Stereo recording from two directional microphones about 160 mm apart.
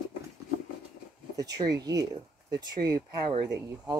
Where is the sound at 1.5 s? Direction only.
20° right (ahead or behind).